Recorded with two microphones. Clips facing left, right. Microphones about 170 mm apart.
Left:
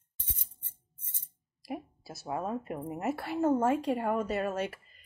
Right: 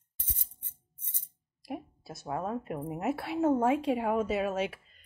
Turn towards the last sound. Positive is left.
turn(degrees=0)  # may be behind; listen again after turning